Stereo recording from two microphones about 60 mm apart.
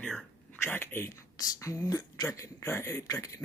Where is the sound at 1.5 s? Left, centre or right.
Left.